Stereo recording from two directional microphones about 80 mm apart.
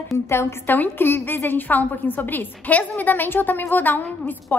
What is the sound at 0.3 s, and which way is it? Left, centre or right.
A woman's voice, left.